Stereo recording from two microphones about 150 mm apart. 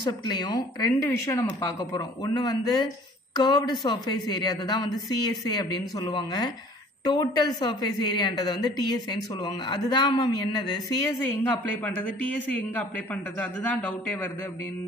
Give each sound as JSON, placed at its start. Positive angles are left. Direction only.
{"t": 0.0, "sound": "a woman's voice", "side_deg": 25}
{"t": 11.2, "sound": "speech", "side_deg": 10}